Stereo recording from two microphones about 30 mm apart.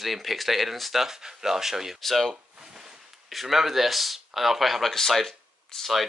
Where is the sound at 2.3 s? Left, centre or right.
Right.